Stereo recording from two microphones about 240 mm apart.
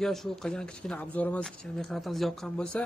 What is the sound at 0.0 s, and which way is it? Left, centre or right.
Speech, centre.